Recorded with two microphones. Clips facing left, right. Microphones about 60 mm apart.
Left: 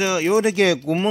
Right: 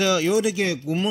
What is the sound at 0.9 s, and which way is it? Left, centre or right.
Speech, left.